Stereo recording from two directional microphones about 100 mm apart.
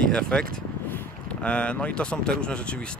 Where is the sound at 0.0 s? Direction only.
5° left (ahead or behind).